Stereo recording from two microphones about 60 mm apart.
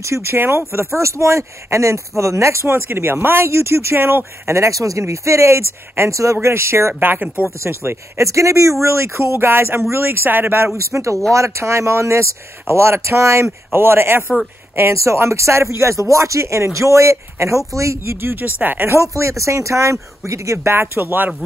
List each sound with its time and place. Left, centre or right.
0.0 s speech: right
2.7 s speech: right
4.6 s speech: right
6.4 s speech: right
8.3 s speech: right
10.8 s speech: right
18.2 s speech: right
18.9 s speech: right
20.5 s speech: right